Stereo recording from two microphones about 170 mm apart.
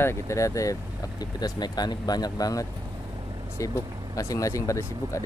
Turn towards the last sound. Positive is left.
turn(degrees=20)  # may be behind; listen again after turning